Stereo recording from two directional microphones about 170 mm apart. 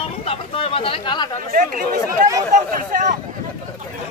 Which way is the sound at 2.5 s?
50° right (ahead or behind).